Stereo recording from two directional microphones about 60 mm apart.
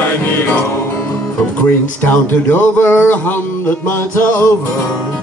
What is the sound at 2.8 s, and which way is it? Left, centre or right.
Music, left.